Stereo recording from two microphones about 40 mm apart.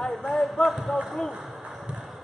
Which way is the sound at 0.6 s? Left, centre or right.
Centre.